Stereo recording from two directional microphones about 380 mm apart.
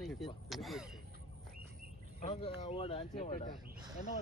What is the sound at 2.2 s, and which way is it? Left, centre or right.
Speech, centre.